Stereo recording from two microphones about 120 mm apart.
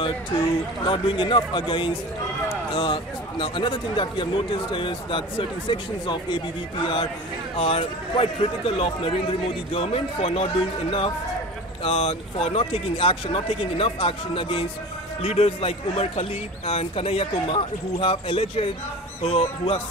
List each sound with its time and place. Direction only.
0.0 s a man's voice: 45° left (ahead or behind)